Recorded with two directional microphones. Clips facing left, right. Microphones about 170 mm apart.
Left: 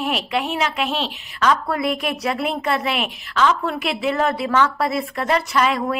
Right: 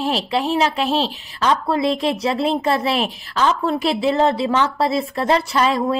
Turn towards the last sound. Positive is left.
turn(degrees=-30)  # may be behind; listen again after turning